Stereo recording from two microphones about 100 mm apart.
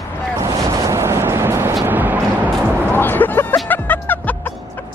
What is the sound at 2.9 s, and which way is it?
Music, 20° left (ahead or behind).